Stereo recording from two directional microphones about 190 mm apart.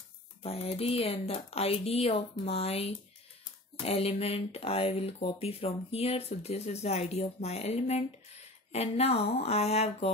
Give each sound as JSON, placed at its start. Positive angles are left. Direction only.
{"t": 0.4, "sound": "speech", "side_deg": 30}